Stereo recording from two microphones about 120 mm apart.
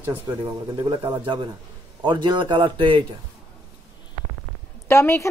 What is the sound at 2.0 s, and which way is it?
A man's voice, 40° right (ahead or behind).